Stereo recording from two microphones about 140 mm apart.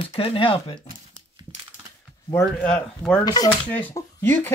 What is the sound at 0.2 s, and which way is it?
Speech, 40° left (ahead or behind).